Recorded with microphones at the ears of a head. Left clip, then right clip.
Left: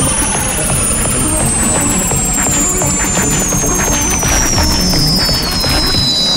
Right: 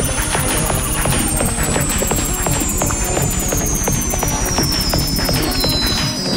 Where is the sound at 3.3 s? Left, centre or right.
Left.